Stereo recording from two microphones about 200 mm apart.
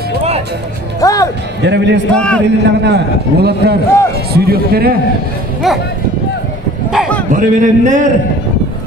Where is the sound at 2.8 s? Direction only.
55° right (ahead or behind).